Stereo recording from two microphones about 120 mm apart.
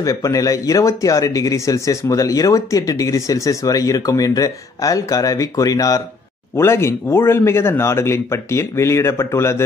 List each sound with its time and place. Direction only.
0.0 s speech: 25° left (ahead or behind)